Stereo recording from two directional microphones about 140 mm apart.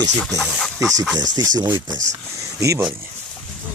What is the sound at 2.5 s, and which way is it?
Speech, 20° right (ahead or behind).